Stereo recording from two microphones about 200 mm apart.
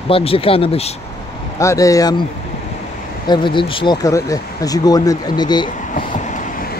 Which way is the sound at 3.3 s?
25° left (ahead or behind).